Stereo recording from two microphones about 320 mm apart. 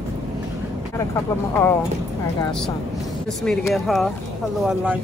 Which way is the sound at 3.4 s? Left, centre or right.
Centre.